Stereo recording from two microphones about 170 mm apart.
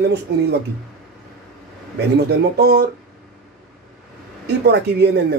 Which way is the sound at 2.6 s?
75° right (ahead or behind).